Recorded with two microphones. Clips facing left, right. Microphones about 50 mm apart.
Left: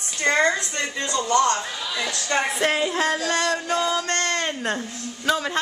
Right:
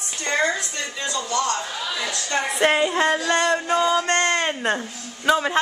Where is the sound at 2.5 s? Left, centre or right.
Centre.